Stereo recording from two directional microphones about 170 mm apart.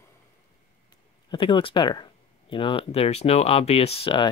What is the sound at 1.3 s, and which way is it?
Speech, 30° left (ahead or behind).